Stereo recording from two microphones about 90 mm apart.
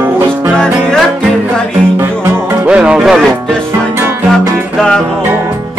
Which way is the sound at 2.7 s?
10° right (ahead or behind).